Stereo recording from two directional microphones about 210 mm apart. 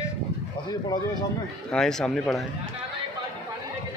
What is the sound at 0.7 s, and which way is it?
Speech, 20° left (ahead or behind).